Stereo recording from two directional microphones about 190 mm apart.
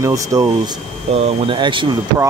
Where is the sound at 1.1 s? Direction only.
30° right (ahead or behind).